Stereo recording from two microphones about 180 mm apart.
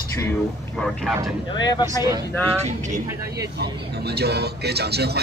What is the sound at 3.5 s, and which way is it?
Speech, 65° right (ahead or behind).